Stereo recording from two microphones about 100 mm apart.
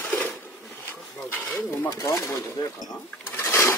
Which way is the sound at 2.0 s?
35° left (ahead or behind).